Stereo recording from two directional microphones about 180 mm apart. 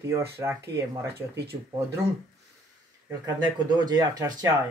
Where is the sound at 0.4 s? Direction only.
15° right (ahead or behind).